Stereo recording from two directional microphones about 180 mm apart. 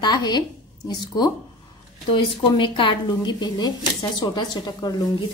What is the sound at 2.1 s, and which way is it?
A woman's voice, 30° left (ahead or behind).